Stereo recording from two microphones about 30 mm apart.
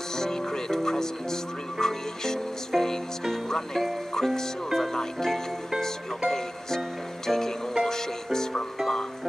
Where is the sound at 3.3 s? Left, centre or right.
Centre.